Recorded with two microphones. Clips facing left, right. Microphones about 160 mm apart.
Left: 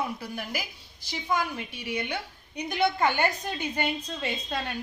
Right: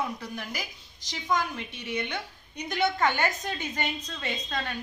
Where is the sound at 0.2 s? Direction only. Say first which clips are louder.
Left 2 dB; 10° left (ahead or behind).